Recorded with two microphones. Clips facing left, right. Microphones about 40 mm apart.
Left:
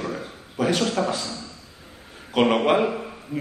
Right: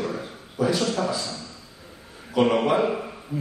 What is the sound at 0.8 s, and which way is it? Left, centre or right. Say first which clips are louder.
Speech: left 1 dB; left.